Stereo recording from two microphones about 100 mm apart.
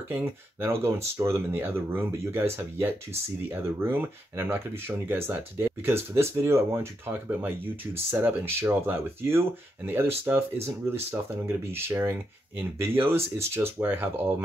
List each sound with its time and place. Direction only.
0.1 s speech: 25° right (ahead or behind)